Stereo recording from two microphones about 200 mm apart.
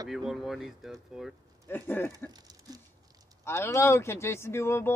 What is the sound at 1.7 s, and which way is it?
Speech, 10° left (ahead or behind).